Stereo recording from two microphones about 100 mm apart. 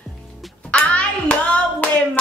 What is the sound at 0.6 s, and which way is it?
Hands, 10° left (ahead or behind).